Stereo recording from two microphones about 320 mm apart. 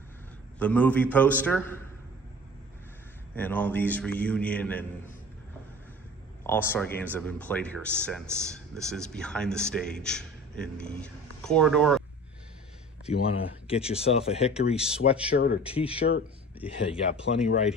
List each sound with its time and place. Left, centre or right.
0.6 s speech: centre
3.3 s speech: centre
6.4 s speech: centre
13.0 s speech: centre